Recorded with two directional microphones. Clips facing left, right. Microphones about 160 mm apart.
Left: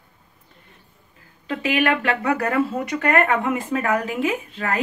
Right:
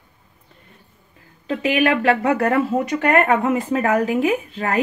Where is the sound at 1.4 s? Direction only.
40° right (ahead or behind).